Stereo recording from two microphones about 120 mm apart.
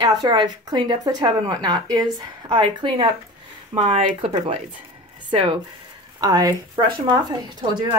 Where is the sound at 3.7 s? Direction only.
50° right (ahead or behind).